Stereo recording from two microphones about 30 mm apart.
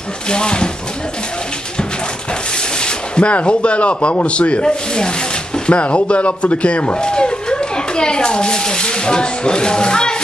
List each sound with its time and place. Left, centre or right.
0.3 s speech: left
2.8 s a sound: left
3.3 s speech: left
5.7 s speech: left
7.0 s a child's voice: left